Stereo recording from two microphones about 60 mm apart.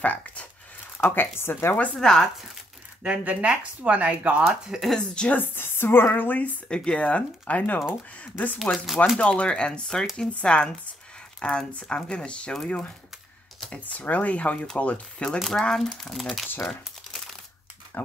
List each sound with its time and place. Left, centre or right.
0.0 s speech: left
1.0 s a woman's voice: left
2.0 s speech: centre
3.3 s speech: right
4.6 s speech: centre
4.9 s speech: centre
5.3 s a woman's voice: left
6.7 s speech: centre
8.7 s speech: centre
9.2 s speech: centre
15.2 s speech: centre
16.6 s crumpling: centre
17.9 s a sound: left